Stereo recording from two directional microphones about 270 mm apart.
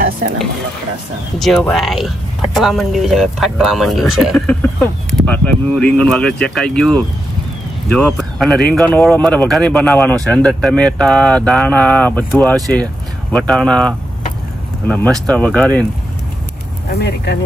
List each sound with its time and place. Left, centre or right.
1.4 s speech: centre
16.9 s speech: left